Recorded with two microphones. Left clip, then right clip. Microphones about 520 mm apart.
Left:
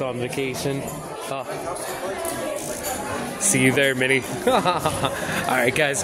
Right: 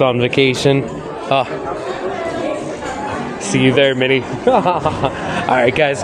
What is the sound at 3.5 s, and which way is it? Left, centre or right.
Speech, left.